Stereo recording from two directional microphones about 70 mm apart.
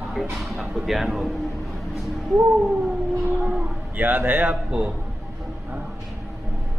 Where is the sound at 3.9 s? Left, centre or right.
Right.